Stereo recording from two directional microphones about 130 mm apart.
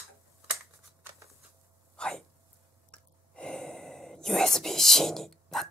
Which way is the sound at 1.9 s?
5° left (ahead or behind).